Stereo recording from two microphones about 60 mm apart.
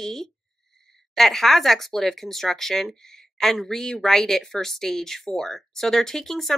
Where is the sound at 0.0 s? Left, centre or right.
Centre.